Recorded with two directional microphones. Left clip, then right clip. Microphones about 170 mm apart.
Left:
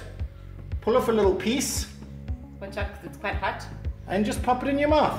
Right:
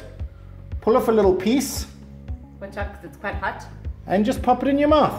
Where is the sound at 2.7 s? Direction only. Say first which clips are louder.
Right 2 dB; 5° right (ahead or behind).